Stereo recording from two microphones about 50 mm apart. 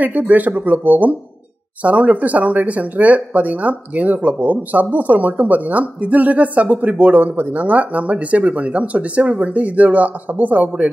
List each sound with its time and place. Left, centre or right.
0.0 s speech: right